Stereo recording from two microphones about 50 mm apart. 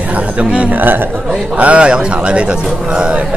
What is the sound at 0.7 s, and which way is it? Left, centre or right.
Speech, right.